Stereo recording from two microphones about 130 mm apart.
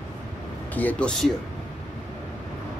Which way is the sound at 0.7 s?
10° left (ahead or behind).